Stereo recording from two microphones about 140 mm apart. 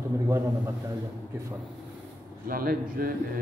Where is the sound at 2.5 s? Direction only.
90° right.